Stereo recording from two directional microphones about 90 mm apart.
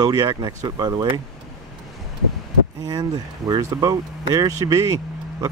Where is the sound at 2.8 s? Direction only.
50° right (ahead or behind).